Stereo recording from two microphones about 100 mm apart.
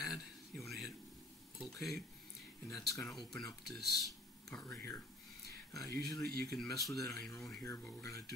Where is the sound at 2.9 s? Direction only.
Centre (ahead or behind).